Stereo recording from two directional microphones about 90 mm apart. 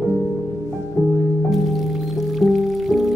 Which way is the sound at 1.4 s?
Centre (ahead or behind).